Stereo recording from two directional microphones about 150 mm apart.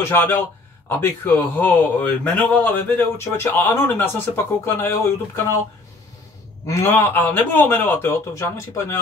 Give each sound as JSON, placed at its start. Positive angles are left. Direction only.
{"t": 0.0, "sound": "a man's voice", "side_deg": 15}
{"t": 6.6, "sound": "a man's voice", "side_deg": 20}